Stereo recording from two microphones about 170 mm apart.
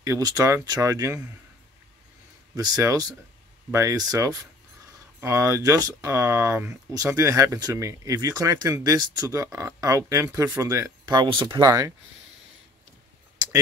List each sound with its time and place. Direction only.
0.0 s speech: 20° right (ahead or behind)
2.5 s speech: 20° right (ahead or behind)